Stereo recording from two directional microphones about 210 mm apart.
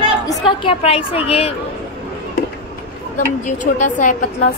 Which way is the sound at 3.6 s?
35° left (ahead or behind).